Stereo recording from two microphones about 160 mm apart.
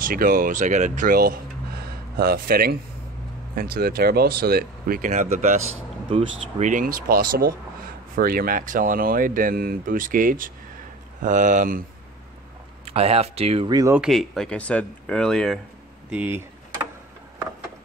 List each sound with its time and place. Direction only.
0.0 s speech: 60° right (ahead or behind)
12.8 s speech: 40° right (ahead or behind)
13.7 s speech: 25° right (ahead or behind)
13.9 s speech: centre (ahead or behind)
16.1 s a sound: 10° right (ahead or behind)